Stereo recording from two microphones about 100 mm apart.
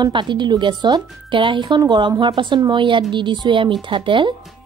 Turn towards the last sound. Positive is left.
turn(degrees=-55)  # may be behind; listen again after turning